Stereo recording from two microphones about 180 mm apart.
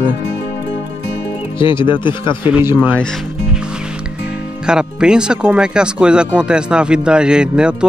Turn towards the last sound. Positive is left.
turn(degrees=-5)  # may be behind; listen again after turning